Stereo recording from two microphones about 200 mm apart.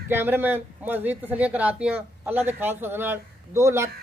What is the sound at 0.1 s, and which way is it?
A woman's voice, 10° right (ahead or behind).